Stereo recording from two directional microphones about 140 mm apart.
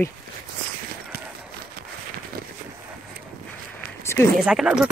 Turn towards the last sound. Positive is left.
turn(degrees=-5)  # may be behind; listen again after turning